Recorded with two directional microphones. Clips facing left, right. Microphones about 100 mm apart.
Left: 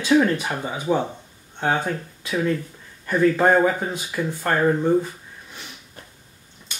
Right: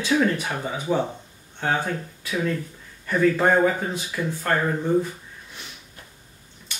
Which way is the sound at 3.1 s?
15° left (ahead or behind).